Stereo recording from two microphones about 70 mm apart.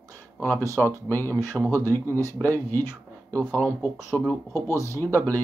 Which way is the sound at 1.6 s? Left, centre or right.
Centre.